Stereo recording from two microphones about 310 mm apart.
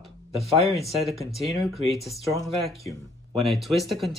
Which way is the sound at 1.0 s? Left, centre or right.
Centre.